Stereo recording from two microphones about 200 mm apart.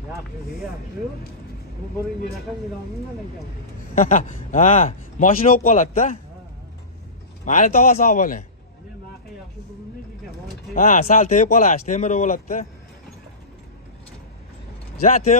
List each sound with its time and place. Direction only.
3.9 s speech: 40° left (ahead or behind)
7.4 s speech: 40° left (ahead or behind)
10.7 s speech: 40° left (ahead or behind)
15.0 s speech: 40° left (ahead or behind)